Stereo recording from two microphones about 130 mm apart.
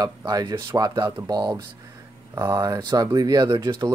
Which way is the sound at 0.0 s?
30° right (ahead or behind).